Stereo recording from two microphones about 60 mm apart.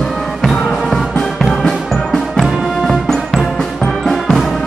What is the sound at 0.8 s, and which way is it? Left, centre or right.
Music, centre.